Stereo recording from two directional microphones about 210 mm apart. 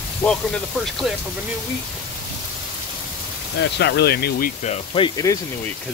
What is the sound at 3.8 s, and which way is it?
Speech, 50° left (ahead or behind).